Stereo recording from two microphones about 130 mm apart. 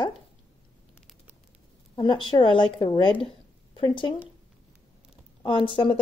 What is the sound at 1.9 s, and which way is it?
Speech, 40° left (ahead or behind).